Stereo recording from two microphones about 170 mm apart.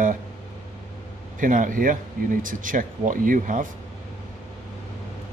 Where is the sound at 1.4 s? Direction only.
50° right (ahead or behind).